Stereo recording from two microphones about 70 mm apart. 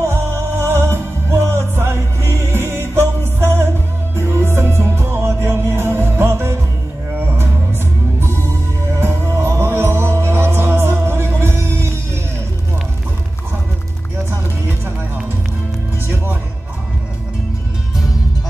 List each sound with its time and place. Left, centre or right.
0.0 s music: right
9.0 s music: right